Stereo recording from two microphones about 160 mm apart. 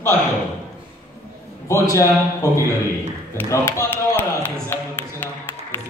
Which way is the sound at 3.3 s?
15° left (ahead or behind).